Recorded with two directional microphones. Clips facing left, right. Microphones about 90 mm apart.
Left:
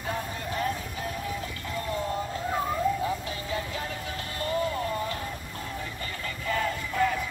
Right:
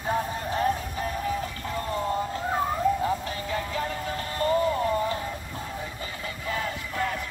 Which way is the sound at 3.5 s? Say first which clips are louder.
Right 4 dB; 40° right (ahead or behind).